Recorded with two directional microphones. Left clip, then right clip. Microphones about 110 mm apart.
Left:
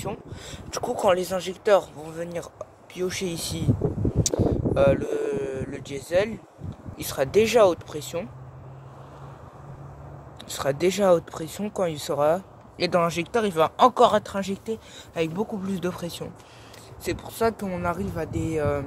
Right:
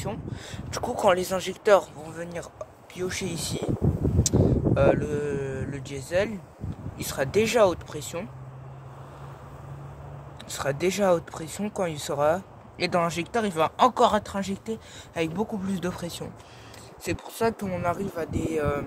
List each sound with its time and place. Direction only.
0.1 s speech: 5° left (ahead or behind)
0.8 s speech: 15° right (ahead or behind)
2.0 s speech: 15° left (ahead or behind)
4.7 s speech: 20° left (ahead or behind)
10.5 s speech: 15° left (ahead or behind)
17.0 s speech: 20° left (ahead or behind)